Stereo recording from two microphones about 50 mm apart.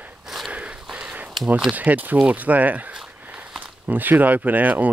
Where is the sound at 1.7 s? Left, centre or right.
Right.